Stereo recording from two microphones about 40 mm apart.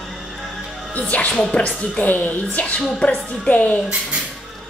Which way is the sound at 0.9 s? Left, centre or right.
Left.